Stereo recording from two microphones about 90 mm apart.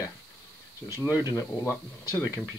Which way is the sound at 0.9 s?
35° left (ahead or behind).